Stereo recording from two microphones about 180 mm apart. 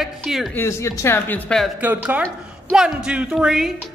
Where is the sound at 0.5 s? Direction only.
15° left (ahead or behind).